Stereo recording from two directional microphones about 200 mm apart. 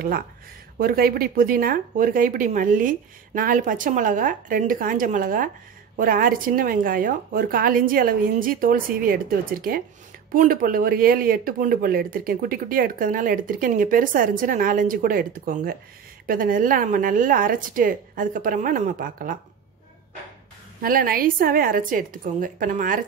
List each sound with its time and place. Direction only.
0.7 s speech: 45° right (ahead or behind)
20.8 s speech: 45° right (ahead or behind)